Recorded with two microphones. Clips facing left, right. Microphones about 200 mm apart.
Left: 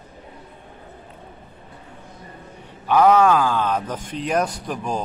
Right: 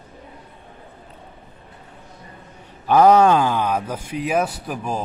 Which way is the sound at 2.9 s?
40° right (ahead or behind).